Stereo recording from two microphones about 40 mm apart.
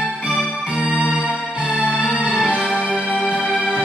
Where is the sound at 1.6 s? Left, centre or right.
Left.